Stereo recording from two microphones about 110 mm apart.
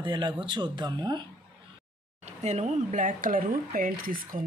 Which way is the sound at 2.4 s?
90° right.